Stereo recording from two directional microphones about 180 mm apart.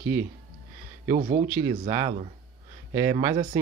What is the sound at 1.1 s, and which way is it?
Speech, 35° right (ahead or behind).